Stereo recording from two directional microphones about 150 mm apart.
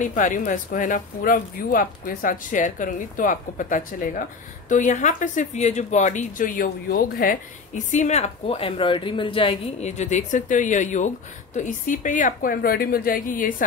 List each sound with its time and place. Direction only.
0.0 s speech: 60° left (ahead or behind)